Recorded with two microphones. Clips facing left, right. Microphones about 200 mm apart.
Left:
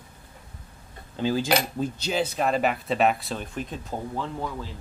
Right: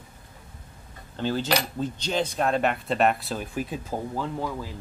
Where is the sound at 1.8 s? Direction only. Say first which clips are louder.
Left 1 dB; 5° left (ahead or behind).